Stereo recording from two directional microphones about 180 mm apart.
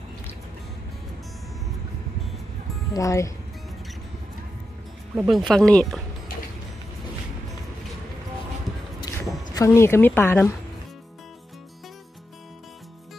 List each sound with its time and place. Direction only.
2.9 s speech: 20° left (ahead or behind)
5.1 s speech: 5° right (ahead or behind)
9.1 s a sound: 20° left (ahead or behind)
9.5 s speech: 15° left (ahead or behind)